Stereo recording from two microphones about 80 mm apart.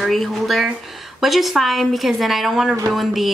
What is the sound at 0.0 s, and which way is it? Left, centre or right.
Speech, centre.